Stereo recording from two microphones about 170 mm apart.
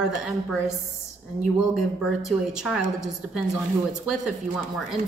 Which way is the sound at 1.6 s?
Centre (ahead or behind).